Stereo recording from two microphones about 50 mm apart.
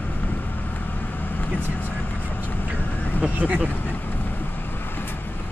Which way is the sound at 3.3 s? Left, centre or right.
Right.